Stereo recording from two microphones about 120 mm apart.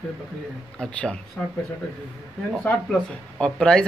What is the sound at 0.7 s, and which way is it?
Speech, 10° left (ahead or behind).